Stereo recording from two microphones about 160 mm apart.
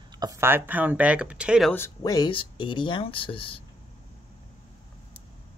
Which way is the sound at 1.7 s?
20° left (ahead or behind).